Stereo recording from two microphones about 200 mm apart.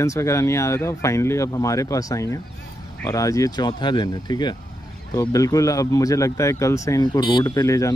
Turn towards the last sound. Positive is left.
turn(degrees=15)  # may be behind; listen again after turning